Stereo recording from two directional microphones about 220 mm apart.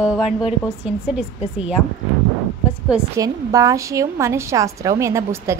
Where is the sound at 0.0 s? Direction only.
5° right (ahead or behind).